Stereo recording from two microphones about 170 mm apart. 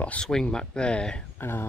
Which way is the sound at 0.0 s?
5° left (ahead or behind).